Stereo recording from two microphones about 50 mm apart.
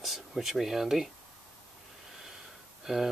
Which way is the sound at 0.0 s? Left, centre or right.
Centre.